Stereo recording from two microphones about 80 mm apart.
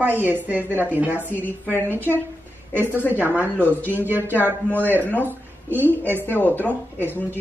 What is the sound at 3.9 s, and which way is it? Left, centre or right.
Speech, right.